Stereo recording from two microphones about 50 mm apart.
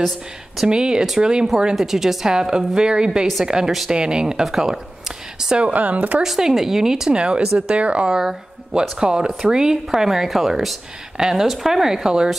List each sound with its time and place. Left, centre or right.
0.7 s a woman's voice: centre
4.5 s a sound: centre
5.6 s speech: right
6.2 s a woman's voice: centre; by 8.2 s right
8.2 s a woman's voice: centre